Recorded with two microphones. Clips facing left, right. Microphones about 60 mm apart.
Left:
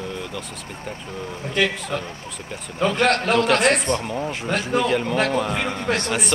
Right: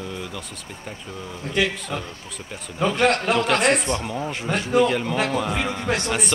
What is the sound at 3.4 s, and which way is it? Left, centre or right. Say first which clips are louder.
A man's voice: left 2 dB; centre.